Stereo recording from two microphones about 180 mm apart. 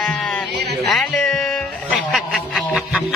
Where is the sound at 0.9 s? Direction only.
Centre (ahead or behind).